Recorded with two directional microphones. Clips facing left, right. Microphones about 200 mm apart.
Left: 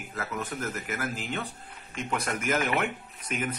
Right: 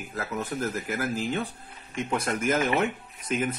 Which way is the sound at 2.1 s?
30° right (ahead or behind).